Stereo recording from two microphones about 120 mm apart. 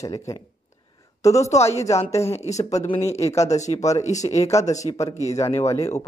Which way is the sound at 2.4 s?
70° left (ahead or behind).